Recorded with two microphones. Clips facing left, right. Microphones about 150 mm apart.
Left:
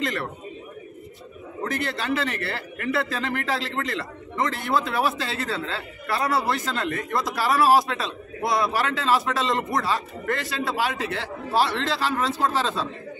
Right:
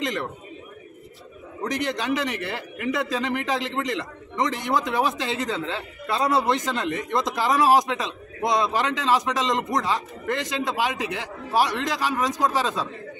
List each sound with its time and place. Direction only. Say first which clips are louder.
0.0 s a man's voice: even; 20° right (ahead or behind)
1.6 s a man's voice: right 1 dB; 15° right (ahead or behind)